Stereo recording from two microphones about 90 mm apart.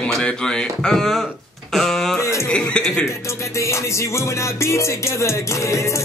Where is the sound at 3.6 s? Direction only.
35° left (ahead or behind).